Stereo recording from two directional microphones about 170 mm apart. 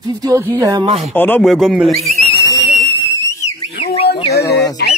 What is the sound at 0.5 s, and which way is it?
Speech, 25° right (ahead or behind).